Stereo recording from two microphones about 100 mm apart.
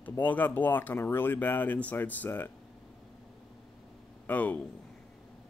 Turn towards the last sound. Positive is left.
turn(degrees=15)  # may be behind; listen again after turning